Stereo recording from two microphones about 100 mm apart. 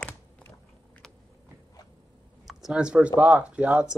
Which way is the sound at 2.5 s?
5° right (ahead or behind).